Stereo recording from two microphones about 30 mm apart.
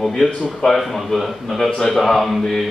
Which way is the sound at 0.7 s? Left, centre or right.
Centre.